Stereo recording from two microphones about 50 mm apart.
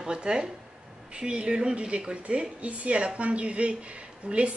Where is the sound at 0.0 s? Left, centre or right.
Centre.